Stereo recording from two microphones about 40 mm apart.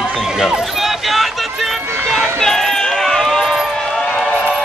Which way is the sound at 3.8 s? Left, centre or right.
Centre.